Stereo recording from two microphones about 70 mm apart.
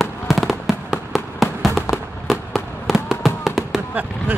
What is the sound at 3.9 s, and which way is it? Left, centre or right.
Basketball bounce, right.